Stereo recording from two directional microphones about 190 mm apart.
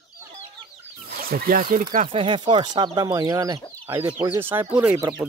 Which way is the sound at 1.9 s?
30° right (ahead or behind).